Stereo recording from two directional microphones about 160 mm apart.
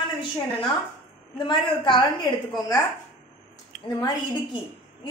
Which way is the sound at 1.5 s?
30° left (ahead or behind).